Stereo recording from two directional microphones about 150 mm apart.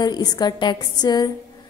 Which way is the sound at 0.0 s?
25° left (ahead or behind).